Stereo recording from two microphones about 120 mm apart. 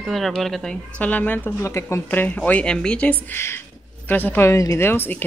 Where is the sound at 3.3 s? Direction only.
20° left (ahead or behind).